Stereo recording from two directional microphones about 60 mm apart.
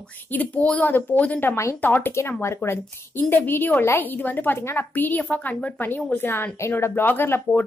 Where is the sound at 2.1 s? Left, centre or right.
Left.